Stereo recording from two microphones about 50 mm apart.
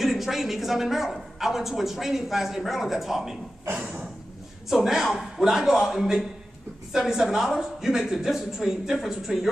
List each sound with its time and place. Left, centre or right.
0.0 s a woman's voice: centre
3.7 s a sound: right
4.6 s speech: centre